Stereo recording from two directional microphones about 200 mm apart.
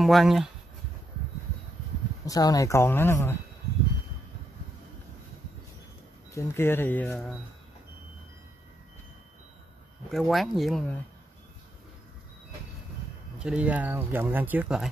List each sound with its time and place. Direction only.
0.0 s speech: centre (ahead or behind)
2.2 s speech: 15° left (ahead or behind)
6.3 s speech: 10° left (ahead or behind)
10.1 s speech: centre (ahead or behind)
13.4 s speech: 5° right (ahead or behind)